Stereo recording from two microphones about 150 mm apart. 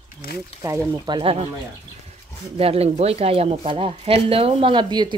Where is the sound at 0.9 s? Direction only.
35° right (ahead or behind).